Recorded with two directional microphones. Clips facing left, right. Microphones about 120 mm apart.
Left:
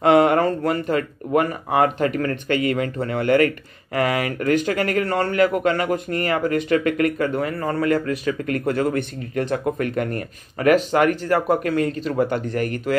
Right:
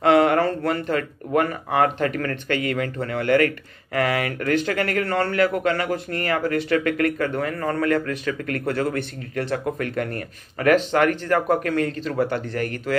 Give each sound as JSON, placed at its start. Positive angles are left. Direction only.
{"t": 0.0, "sound": "speech", "side_deg": 20}